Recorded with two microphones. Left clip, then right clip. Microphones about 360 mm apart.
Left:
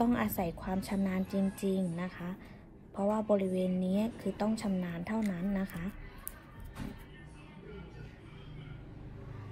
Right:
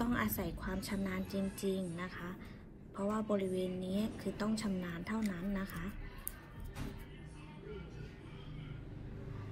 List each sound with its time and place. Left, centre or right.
0.0 s a woman's voice: left